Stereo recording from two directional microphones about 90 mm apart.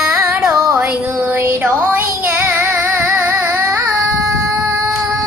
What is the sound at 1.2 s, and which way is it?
Music, 25° right (ahead or behind).